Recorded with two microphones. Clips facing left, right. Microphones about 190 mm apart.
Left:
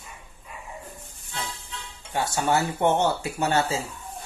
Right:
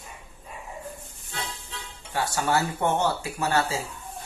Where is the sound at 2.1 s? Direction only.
20° left (ahead or behind).